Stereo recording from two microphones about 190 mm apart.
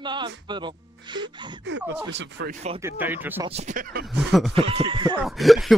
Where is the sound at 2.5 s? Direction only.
35° right (ahead or behind).